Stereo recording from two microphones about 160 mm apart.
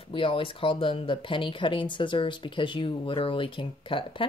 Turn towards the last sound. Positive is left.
turn(degrees=30)  # may be behind; listen again after turning